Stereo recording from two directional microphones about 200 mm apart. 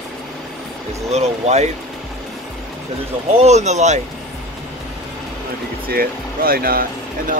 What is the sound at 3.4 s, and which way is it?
Speech, 35° right (ahead or behind).